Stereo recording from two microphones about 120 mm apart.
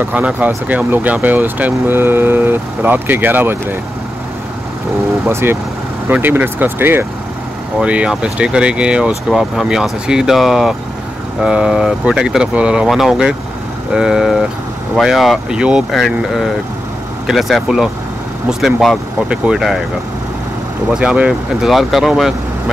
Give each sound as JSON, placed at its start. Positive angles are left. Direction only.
{"t": 0.0, "sound": "speech", "side_deg": -15}
{"t": 5.2, "sound": "speech", "side_deg": -20}
{"t": 20.9, "sound": "speech", "side_deg": -5}